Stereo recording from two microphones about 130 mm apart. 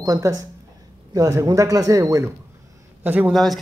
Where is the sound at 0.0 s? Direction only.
25° right (ahead or behind).